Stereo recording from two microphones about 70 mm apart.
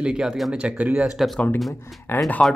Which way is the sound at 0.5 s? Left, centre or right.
Centre.